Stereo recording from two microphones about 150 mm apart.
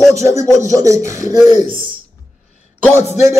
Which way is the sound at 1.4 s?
50° left (ahead or behind).